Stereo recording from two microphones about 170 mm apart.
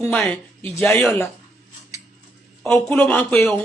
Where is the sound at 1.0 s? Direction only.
15° left (ahead or behind).